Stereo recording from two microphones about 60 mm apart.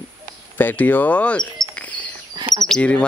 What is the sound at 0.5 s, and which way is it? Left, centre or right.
Speech, left.